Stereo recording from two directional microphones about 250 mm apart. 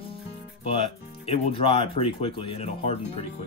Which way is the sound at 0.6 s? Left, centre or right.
Left.